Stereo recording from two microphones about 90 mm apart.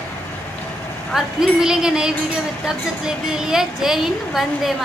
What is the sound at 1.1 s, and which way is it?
A woman's voice, 5° right (ahead or behind).